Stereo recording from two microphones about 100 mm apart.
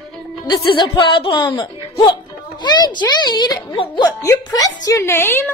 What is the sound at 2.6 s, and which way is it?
A child's voice, 50° left (ahead or behind).